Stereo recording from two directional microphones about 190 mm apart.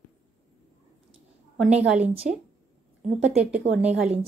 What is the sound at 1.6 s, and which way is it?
Speech, 5° right (ahead or behind).